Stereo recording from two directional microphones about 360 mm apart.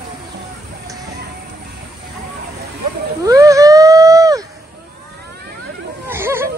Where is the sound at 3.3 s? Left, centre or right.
Centre.